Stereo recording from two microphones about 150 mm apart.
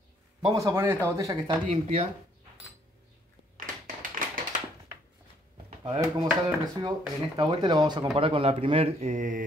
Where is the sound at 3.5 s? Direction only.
60° right (ahead or behind).